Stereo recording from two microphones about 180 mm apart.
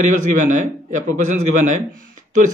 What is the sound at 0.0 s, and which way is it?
Speech, 45° right (ahead or behind).